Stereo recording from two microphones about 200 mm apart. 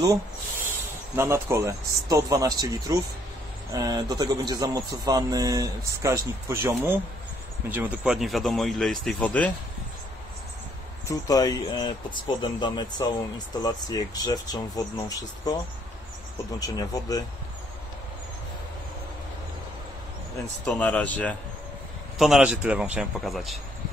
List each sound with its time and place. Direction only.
1.1 s speech: 10° right (ahead or behind); by 9.5 s 5° left (ahead or behind)
11.1 s speech: 20° left (ahead or behind)
20.6 s speech: 5° left (ahead or behind)
22.2 s speech: 5° right (ahead or behind)